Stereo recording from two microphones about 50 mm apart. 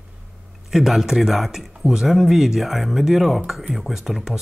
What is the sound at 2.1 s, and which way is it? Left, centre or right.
Speech, centre.